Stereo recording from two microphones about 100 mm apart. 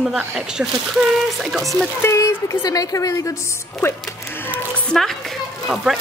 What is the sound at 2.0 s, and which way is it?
A woman's voice, 30° left (ahead or behind).